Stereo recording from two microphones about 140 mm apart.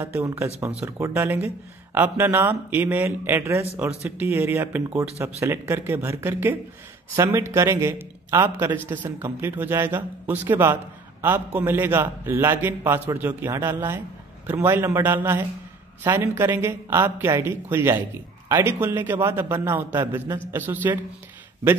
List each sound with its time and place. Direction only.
0.0 s a man's voice: 15° right (ahead or behind)